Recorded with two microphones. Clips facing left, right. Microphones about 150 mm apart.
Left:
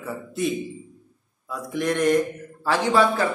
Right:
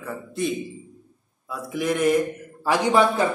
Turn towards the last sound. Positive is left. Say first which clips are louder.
# right 1 dB
turn(degrees=-15)  # may be behind; listen again after turning